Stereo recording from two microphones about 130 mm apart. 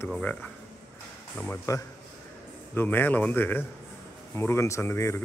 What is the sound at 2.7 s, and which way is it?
Speech, 15° left (ahead or behind).